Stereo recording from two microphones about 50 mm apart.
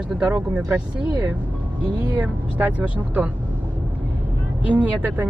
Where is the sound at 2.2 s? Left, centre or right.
Right.